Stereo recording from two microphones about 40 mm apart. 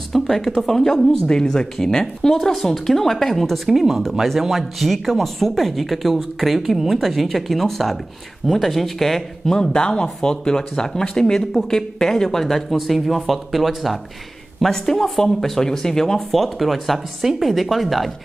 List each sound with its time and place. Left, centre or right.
0.1 s speech: centre
3.6 s speech: centre
9.5 s speech: centre
14.6 s speech: centre